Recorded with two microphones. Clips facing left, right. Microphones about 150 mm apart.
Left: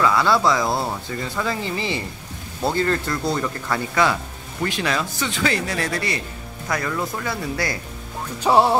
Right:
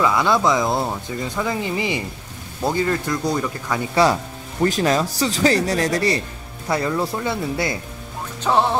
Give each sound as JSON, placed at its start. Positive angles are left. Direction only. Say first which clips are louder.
{"t": 0.0, "sound": "speech", "louder": "even", "side_deg": -20}
{"t": 3.9, "sound": "speech", "louder": "right 5 dB", "side_deg": -35}
{"t": 8.4, "sound": "music", "louder": "left 2 dB", "side_deg": 10}